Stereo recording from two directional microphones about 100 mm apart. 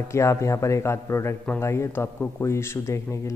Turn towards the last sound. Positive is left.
turn(degrees=30)  # may be behind; listen again after turning